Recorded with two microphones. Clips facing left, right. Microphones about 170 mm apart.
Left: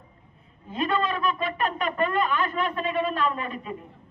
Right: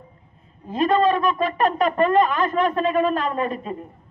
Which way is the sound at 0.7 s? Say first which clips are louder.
Right 8 dB; 40° right (ahead or behind).